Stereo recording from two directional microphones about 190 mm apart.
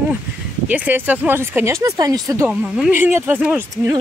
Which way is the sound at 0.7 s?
10° right (ahead or behind).